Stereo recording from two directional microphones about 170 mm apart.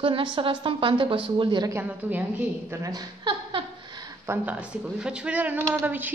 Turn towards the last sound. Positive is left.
turn(degrees=-10)  # may be behind; listen again after turning